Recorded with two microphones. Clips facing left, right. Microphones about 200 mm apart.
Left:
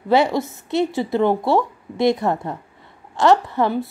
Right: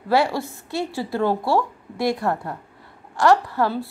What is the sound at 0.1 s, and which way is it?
A woman's voice, 20° left (ahead or behind).